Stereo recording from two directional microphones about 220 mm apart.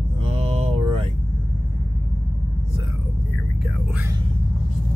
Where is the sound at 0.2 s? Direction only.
30° right (ahead or behind).